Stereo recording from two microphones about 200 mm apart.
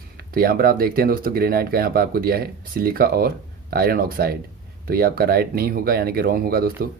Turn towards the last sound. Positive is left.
turn(degrees=-45)  # may be behind; listen again after turning